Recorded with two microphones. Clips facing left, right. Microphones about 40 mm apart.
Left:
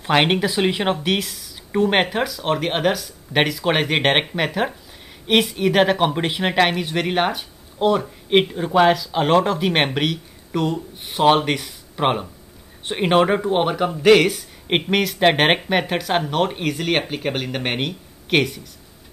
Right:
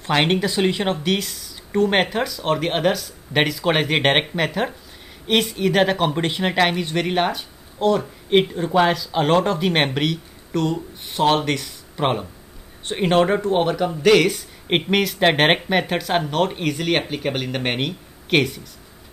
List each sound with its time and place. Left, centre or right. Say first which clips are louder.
0.0 s speech: left 1 dB; centre
14.2 s speech: even; centre